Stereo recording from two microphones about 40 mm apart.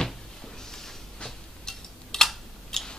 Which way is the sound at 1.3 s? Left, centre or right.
Centre.